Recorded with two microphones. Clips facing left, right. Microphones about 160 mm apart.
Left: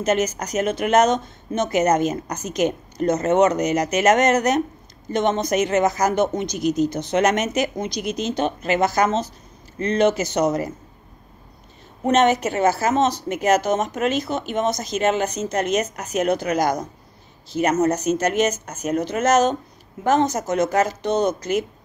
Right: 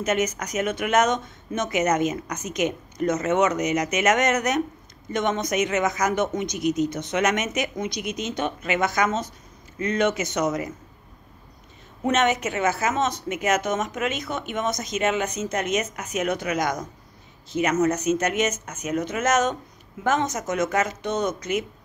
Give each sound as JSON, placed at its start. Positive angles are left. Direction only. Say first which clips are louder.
{"t": 0.0, "sound": "speech", "louder": "left 3 dB", "side_deg": 35}
{"t": 12.1, "sound": "speech", "louder": "left 5 dB", "side_deg": 35}